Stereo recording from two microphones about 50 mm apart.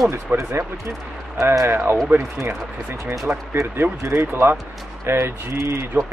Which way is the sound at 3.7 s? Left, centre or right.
Right.